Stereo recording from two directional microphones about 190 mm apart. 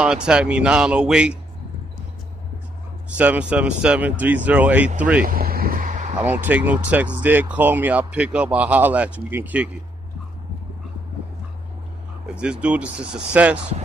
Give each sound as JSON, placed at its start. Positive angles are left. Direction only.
{"t": 0.0, "sound": "speech", "side_deg": -5}
{"t": 3.2, "sound": "speech", "side_deg": -5}
{"t": 5.2, "sound": "vehicle", "side_deg": -50}
{"t": 6.2, "sound": "speech", "side_deg": -10}
{"t": 12.4, "sound": "speech", "side_deg": -5}